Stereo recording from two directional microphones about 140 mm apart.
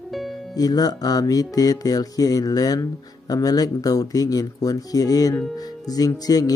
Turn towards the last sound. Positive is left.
turn(degrees=25)  # may be behind; listen again after turning